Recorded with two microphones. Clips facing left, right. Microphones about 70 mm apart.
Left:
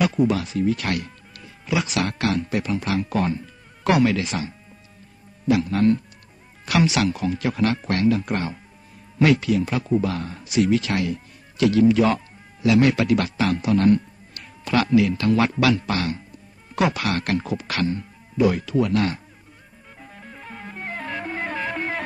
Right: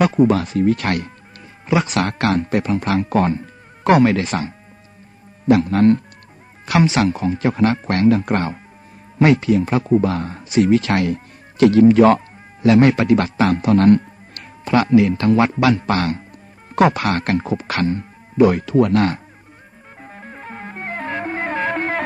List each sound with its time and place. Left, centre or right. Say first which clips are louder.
0.0 s speech: right 6 dB; right
6.6 s speech: right 4 dB; right
9.2 s speech: right 4 dB; right
12.6 s speech: right 5 dB; right
14.6 s speech: right 4 dB; right
20.0 s music: right 5 dB; right